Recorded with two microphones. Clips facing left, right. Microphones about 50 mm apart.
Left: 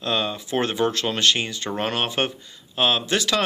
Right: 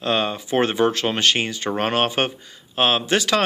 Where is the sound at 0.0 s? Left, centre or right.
Right.